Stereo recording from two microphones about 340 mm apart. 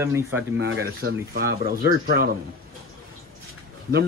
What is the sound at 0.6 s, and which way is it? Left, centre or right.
Speech, right.